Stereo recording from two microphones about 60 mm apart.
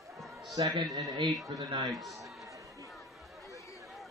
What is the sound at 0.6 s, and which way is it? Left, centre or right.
Speech, right.